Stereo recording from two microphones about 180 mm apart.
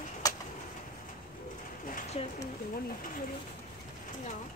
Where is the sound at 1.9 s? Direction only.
35° left (ahead or behind).